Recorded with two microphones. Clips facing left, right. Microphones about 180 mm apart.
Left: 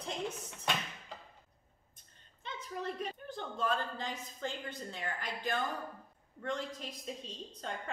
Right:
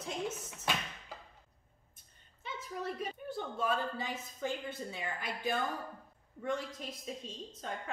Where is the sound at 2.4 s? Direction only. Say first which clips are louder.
Even; 5° right (ahead or behind).